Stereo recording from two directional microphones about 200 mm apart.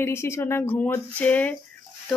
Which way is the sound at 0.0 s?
15° left (ahead or behind).